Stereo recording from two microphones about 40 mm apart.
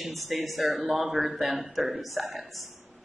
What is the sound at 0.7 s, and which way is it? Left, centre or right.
Speech, right.